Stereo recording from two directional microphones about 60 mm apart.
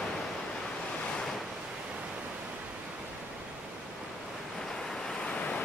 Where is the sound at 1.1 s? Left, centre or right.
Centre.